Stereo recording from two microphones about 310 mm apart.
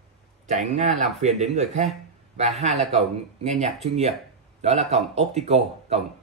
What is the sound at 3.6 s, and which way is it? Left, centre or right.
Speech, right.